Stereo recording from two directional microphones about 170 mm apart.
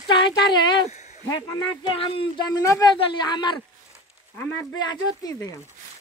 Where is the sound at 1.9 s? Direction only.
30° left (ahead or behind).